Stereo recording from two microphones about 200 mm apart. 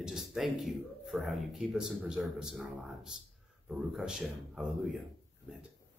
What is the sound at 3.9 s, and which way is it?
Speech, 5° right (ahead or behind).